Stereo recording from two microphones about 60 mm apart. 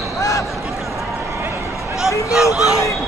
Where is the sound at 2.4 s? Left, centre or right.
Left.